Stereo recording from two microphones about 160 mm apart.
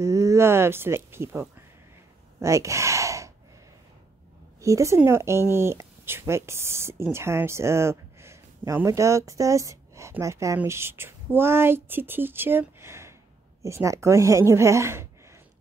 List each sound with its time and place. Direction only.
0.0 s speech: 20° right (ahead or behind)
4.6 s a woman's voice: 20° right (ahead or behind)